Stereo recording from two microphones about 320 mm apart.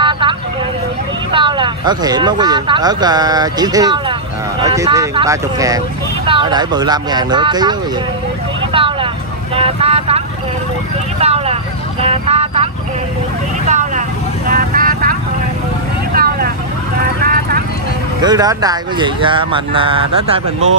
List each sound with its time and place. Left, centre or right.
0.0 s vehicle: centre
1.3 s speech: centre
8.7 s vehicle: centre
12.0 s music: centre
13.7 s vehicle: right
18.2 s speech: centre